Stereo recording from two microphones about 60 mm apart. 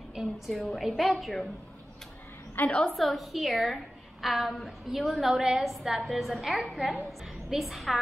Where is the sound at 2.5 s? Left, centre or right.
Left.